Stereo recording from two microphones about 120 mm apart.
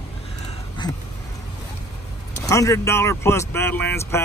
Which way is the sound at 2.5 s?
25° left (ahead or behind).